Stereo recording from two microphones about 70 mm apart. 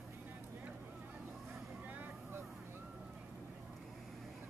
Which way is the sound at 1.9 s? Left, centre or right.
Right.